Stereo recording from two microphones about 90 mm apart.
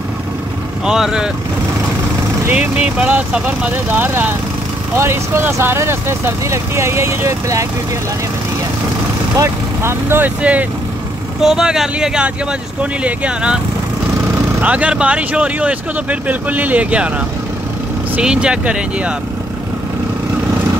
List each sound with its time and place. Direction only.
0.8 s speech: 5° right (ahead or behind)
2.5 s speech: 15° right (ahead or behind); by 7.6 s 35° right (ahead or behind)
9.4 s speech: 25° right (ahead or behind)
11.4 s speech: 5° right (ahead or behind)
14.6 s speech: 15° right (ahead or behind)
18.2 s speech: 10° right (ahead or behind)